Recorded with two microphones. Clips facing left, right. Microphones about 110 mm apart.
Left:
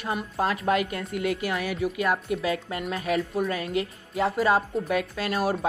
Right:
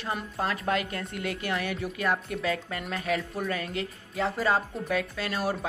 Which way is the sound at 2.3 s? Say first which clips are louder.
Left 3 dB; 20° left (ahead or behind).